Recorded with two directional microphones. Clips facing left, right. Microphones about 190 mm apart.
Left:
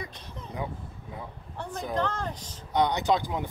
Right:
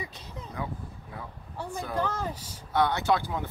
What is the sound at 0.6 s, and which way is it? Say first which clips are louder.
Speech: left 1 dB; 20° left (ahead or behind).